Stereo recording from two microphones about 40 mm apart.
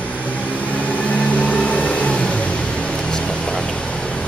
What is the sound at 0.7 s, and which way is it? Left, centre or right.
Vehicle, left.